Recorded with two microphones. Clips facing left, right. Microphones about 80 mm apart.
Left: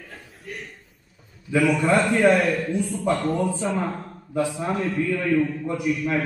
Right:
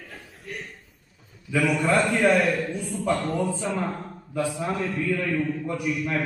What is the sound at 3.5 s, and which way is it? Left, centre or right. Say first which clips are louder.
A man's voice: left 2 dB; centre.